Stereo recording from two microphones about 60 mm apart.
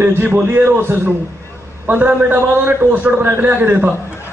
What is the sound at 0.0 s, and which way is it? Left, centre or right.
Speech, right.